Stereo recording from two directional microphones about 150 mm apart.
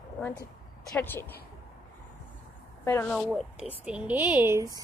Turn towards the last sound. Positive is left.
turn(degrees=-20)  # may be behind; listen again after turning